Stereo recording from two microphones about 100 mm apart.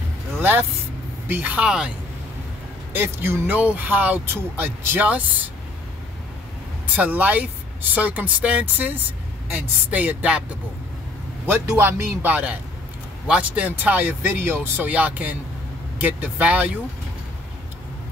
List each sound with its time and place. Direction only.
0.4 s speech: 20° right (ahead or behind)
2.9 s speech: 20° right (ahead or behind)
7.0 s speech: 15° right (ahead or behind)
11.4 s speech: 25° right (ahead or behind)